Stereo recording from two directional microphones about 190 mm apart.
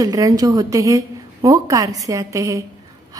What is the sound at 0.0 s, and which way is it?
A woman's voice, 20° right (ahead or behind).